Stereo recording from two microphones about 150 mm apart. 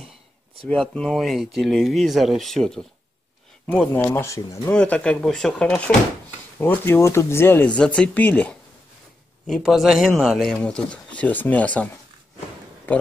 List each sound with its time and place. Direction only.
0.7 s speech: 5° left (ahead or behind)
9.5 s speech: centre (ahead or behind)